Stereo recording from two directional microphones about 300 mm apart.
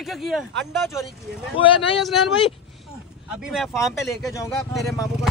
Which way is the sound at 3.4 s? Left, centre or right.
Centre.